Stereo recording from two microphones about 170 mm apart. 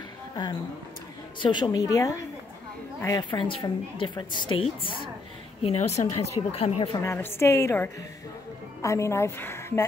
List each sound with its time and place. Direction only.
1.4 s a woman's voice: 25° left (ahead or behind)
5.6 s a woman's voice: 40° left (ahead or behind)
7.0 s a woman's voice: 15° left (ahead or behind)